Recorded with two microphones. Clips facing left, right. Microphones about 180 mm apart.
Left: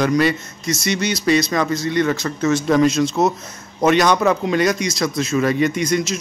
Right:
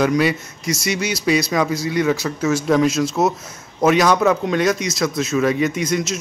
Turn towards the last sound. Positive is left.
turn(degrees=0)  # may be behind; listen again after turning